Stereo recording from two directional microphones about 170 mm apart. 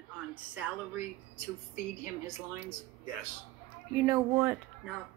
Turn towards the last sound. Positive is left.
turn(degrees=-15)  # may be behind; listen again after turning